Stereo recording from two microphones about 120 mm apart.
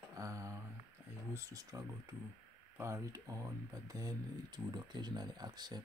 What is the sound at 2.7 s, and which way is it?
Speech, 25° right (ahead or behind).